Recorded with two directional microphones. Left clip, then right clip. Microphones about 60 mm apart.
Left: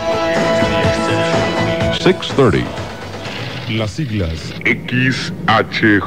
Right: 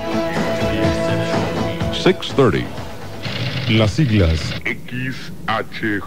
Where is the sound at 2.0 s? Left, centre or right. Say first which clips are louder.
Even; centre.